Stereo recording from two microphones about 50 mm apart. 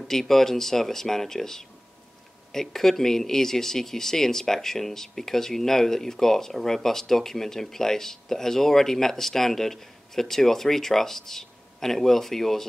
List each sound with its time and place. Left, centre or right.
0.1 s speech: centre